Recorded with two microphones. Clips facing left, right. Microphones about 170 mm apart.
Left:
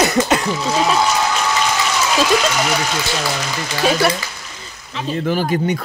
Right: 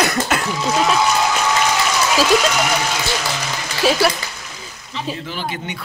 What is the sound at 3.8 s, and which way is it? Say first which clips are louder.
Speech: even; 5° right (ahead or behind).